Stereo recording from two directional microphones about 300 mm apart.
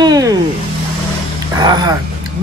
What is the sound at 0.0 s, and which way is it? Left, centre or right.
Snake, centre.